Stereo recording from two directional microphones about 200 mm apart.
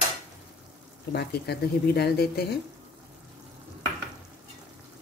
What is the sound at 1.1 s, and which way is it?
Speech, 55° left (ahead or behind).